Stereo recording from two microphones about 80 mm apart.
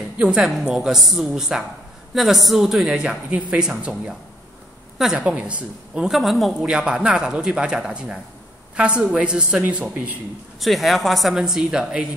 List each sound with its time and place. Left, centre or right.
0.2 s speech: centre
3.0 s speech: centre
4.9 s speech: centre
6.1 s speech: centre
10.6 s speech: centre